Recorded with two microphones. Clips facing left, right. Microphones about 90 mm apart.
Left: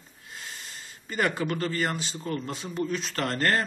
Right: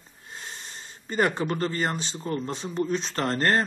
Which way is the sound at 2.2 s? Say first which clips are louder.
Right 3 dB; 30° right (ahead or behind).